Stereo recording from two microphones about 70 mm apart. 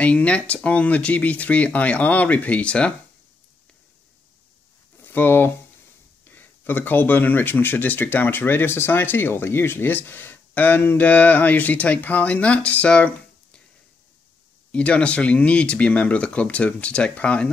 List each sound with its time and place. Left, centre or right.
0.0 s speech: centre
5.0 s speech: left
14.7 s speech: centre